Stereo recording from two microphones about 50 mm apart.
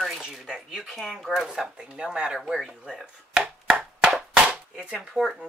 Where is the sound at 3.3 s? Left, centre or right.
Centre.